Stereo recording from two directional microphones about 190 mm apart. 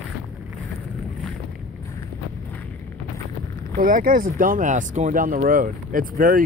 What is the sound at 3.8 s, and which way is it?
Speech, 45° right (ahead or behind).